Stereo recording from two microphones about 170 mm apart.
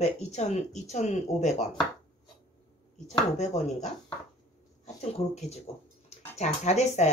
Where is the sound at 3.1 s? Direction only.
45° left (ahead or behind).